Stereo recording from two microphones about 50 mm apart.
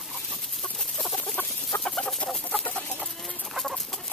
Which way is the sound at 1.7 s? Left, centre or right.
Left.